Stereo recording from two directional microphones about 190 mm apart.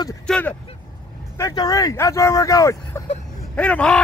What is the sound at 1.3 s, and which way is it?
Speech, 15° left (ahead or behind).